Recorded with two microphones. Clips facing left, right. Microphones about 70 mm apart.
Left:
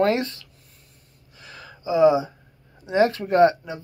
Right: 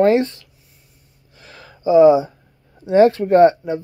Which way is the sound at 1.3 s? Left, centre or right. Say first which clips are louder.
Right 1 dB; right.